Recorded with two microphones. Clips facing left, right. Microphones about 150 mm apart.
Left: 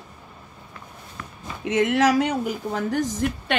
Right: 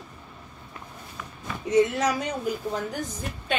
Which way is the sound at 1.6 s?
90° left.